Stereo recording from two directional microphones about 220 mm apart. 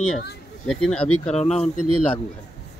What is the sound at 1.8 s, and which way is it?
Speech, 90° left.